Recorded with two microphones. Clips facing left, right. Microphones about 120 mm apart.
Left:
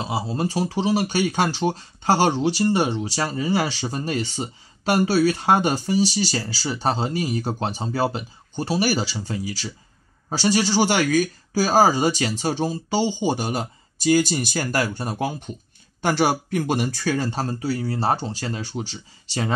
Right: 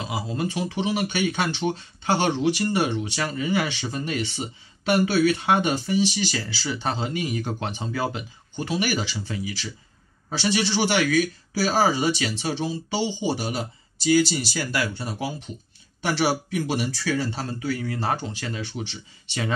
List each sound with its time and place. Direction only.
0.0 s speech: 30° left (ahead or behind)